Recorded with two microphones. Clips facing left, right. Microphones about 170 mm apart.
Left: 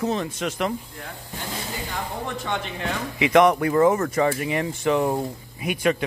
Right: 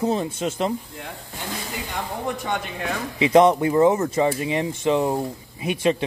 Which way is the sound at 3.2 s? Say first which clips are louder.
Right 2 dB; 30° right (ahead or behind).